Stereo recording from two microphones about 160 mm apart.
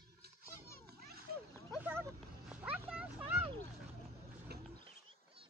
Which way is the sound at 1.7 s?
10° right (ahead or behind).